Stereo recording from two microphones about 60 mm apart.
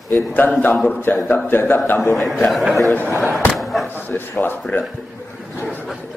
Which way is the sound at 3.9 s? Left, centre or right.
Left.